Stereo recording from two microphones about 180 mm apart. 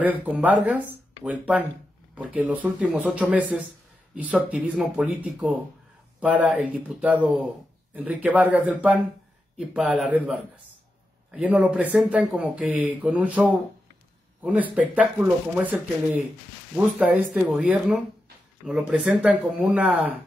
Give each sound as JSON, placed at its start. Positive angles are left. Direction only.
{"t": 0.0, "sound": "speech", "side_deg": -10}
{"t": 15.0, "sound": "speech", "side_deg": -5}